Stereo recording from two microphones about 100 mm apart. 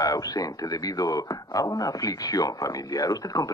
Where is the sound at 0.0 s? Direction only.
40° left (ahead or behind).